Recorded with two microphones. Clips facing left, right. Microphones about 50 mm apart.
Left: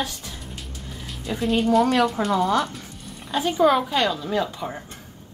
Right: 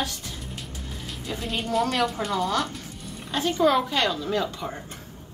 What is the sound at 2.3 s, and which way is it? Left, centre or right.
Speech, centre.